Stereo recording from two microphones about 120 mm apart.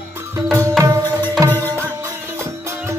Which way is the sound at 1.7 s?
20° right (ahead or behind).